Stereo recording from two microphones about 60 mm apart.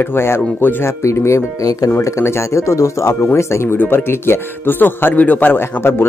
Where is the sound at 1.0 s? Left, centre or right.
Left.